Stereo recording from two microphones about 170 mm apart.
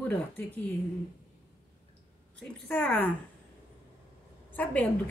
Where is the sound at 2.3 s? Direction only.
5° left (ahead or behind).